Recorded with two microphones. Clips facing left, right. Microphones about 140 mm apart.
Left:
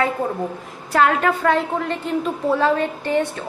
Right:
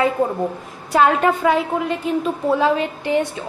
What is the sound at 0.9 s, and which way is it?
A woman's voice, 20° right (ahead or behind).